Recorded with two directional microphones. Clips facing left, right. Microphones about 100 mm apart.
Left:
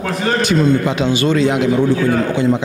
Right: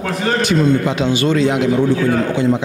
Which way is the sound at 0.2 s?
15° left (ahead or behind).